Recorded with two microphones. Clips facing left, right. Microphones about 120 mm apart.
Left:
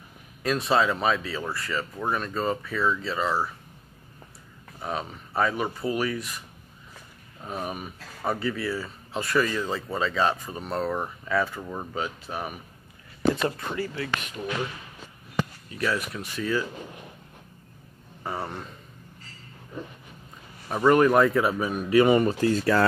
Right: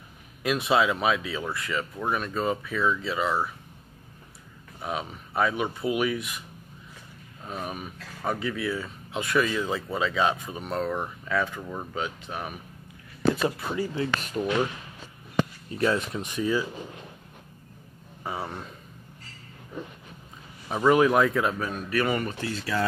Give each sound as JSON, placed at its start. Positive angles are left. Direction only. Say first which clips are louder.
{"t": 0.4, "sound": "speech", "louder": "even", "side_deg": -5}
{"t": 4.7, "sound": "speech", "louder": "even", "side_deg": -5}
{"t": 7.4, "sound": "speech", "louder": "left 2 dB", "side_deg": 5}
{"t": 14.2, "sound": "speech", "louder": "right 5 dB", "side_deg": -40}
{"t": 15.7, "sound": "speech", "louder": "right 3 dB", "side_deg": -25}
{"t": 18.2, "sound": "speech", "louder": "left 1 dB", "side_deg": 0}
{"t": 20.6, "sound": "speech", "louder": "left 1 dB", "side_deg": 0}
{"t": 22.3, "sound": "speech", "louder": "left 9 dB", "side_deg": 45}